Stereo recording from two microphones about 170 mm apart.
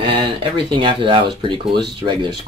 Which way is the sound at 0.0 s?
30° right (ahead or behind).